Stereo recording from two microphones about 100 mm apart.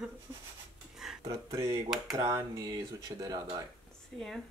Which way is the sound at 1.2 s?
35° right (ahead or behind).